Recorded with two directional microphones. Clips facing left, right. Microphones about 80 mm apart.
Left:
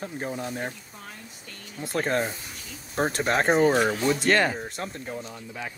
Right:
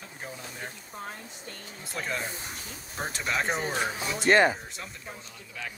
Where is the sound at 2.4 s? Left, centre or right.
Right.